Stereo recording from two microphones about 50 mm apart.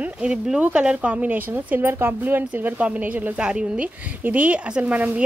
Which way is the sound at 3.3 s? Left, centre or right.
Right.